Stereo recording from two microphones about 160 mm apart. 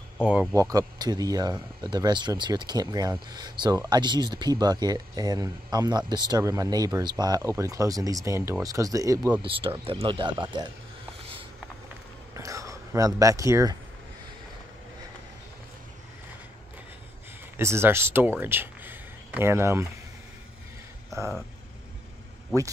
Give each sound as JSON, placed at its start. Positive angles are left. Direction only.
{"t": 0.2, "sound": "speech", "side_deg": -10}
{"t": 0.6, "sound": "speech", "side_deg": -20}
{"t": 9.4, "sound": "speech", "side_deg": -35}
{"t": 12.4, "sound": "speech", "side_deg": -20}
{"t": 17.6, "sound": "speech", "side_deg": -15}
{"t": 21.1, "sound": "speech", "side_deg": -20}